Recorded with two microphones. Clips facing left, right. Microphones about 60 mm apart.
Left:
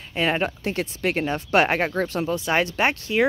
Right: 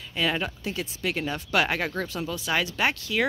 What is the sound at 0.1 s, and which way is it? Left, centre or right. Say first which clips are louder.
Speech: left 4 dB; left.